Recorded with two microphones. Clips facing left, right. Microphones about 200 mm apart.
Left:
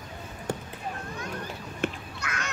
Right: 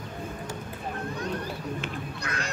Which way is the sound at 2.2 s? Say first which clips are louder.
Even; 35° right (ahead or behind).